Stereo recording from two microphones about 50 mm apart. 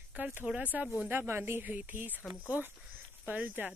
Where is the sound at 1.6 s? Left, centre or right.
Right.